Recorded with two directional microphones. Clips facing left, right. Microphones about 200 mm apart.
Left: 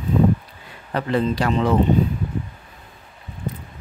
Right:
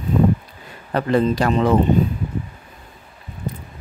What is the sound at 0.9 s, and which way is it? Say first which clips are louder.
Speech: right 3 dB; 45° right (ahead or behind).